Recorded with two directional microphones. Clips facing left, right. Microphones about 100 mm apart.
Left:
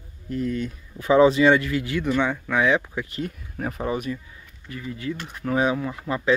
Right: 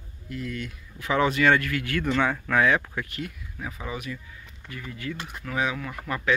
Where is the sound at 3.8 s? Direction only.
45° left (ahead or behind).